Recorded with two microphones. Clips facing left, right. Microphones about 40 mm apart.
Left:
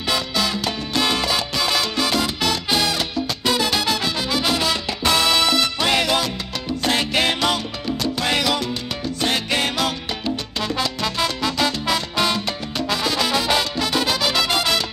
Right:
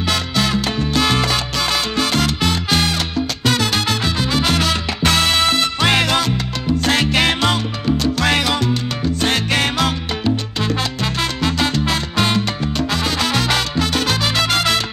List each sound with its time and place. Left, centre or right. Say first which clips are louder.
0.1 s salsa music: right 2 dB; right
2.7 s music: right 2 dB; right
4.0 s music: right 3 dB; right
4.4 s salsa music: right 3 dB; right
7.2 s salsa music: right 3 dB; right
8.0 s salsa music: right 2 dB; right
12.7 s salsa music: even; right